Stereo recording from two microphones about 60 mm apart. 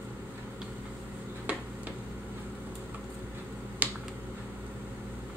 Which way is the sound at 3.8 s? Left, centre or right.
Right.